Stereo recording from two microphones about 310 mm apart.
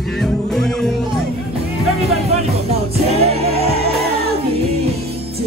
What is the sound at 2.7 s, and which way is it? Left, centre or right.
Music, centre.